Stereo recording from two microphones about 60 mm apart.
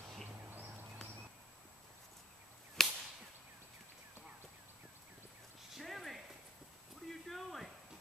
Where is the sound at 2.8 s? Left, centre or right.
Centre.